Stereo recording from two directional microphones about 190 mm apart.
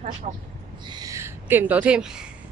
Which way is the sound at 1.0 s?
15° right (ahead or behind).